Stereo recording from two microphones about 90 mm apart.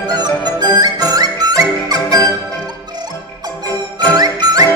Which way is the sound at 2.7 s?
50° right (ahead or behind).